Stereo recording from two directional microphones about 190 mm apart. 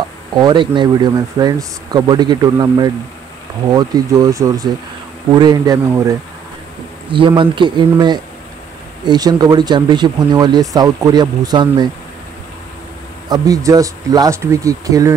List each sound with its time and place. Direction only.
0.4 s speech: 25° right (ahead or behind)
13.3 s speech: 15° right (ahead or behind)